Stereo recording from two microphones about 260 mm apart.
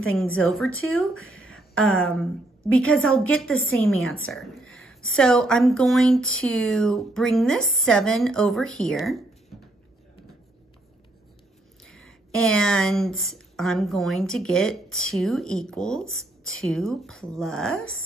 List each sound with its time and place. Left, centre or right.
0.2 s speech: centre
1.2 s a sound: left
1.5 s speech: centre
11.8 s speech: centre